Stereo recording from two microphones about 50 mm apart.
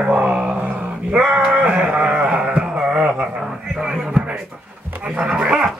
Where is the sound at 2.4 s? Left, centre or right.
Right.